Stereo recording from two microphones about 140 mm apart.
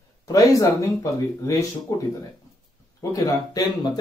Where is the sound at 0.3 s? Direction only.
25° left (ahead or behind).